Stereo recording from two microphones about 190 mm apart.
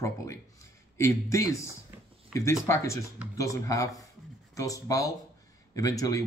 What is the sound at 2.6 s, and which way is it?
Speech, 15° left (ahead or behind).